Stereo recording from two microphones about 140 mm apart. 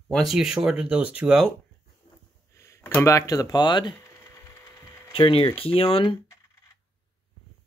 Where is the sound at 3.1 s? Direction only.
25° left (ahead or behind).